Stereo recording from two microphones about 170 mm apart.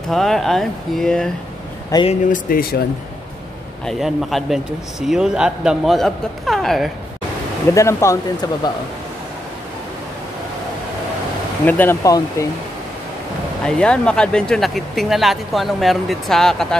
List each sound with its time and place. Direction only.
0.1 s speech: centre (ahead or behind)
2.0 s speech: 50° left (ahead or behind)
3.8 s speech: centre (ahead or behind)
7.7 s speech: 15° left (ahead or behind)
11.6 s speech: 10° left (ahead or behind)
13.7 s speech: 5° left (ahead or behind)